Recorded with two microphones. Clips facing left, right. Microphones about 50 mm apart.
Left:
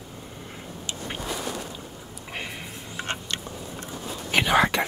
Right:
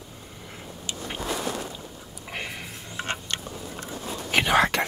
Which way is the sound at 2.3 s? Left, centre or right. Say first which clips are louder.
Right 1 dB; centre.